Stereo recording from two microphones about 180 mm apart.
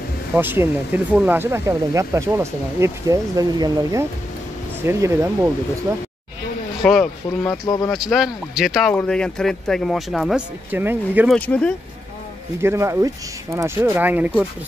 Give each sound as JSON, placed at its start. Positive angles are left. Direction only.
{"t": 0.4, "sound": "speech", "side_deg": -10}
{"t": 6.8, "sound": "speech", "side_deg": 0}
{"t": 7.6, "sound": "speech", "side_deg": 20}
{"t": 7.9, "sound": "speech", "side_deg": 0}
{"t": 10.7, "sound": "speech", "side_deg": -10}
{"t": 11.2, "sound": "speech", "side_deg": 10}
{"t": 12.5, "sound": "speech", "side_deg": -15}